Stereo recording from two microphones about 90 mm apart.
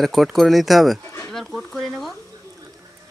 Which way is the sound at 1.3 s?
Centre (ahead or behind).